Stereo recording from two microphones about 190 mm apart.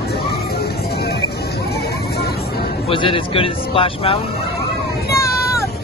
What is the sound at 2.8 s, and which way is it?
Speech, 25° left (ahead or behind).